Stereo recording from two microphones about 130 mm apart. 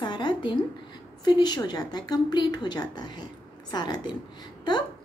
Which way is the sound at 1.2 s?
35° left (ahead or behind).